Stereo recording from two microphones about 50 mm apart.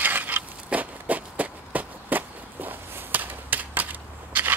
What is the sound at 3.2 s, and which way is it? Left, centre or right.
Typewriter, right.